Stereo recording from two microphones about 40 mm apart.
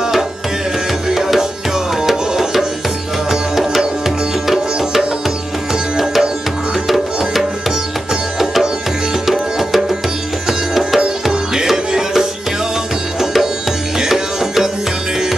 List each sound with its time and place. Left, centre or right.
1.0 s music: centre
5.9 s music: centre